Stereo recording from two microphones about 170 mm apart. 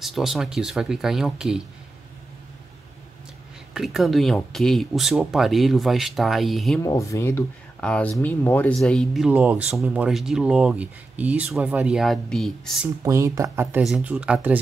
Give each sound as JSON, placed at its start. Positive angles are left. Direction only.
{"t": 0.0, "sound": "speech", "side_deg": 0}
{"t": 3.7, "sound": "speech", "side_deg": 0}
{"t": 6.8, "sound": "speech", "side_deg": 20}
{"t": 13.0, "sound": "speech", "side_deg": -20}
{"t": 13.8, "sound": "speech", "side_deg": 0}